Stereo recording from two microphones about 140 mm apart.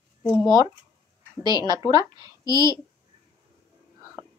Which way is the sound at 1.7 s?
30° right (ahead or behind).